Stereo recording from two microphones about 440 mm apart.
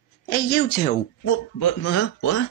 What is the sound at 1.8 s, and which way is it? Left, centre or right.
Speech, left.